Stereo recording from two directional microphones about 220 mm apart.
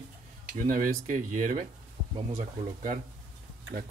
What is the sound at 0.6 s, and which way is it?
Speech, 40° right (ahead or behind).